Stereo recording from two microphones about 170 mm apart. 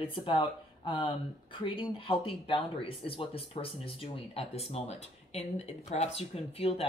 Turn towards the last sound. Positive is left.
turn(degrees=35)  # may be behind; listen again after turning